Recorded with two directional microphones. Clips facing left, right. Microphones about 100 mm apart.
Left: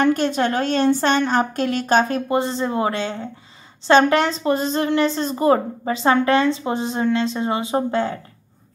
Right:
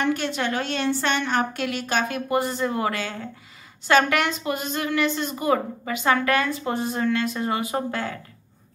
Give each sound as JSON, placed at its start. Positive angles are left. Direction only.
{"t": 0.0, "sound": "a woman's voice", "side_deg": 45}